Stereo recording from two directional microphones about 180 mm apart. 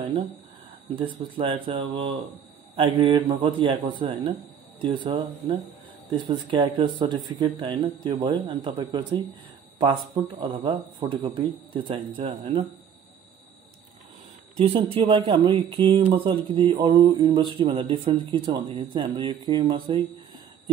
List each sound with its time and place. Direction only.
1.3 s a man's voice: 30° right (ahead or behind)
14.6 s a man's voice: 30° right (ahead or behind)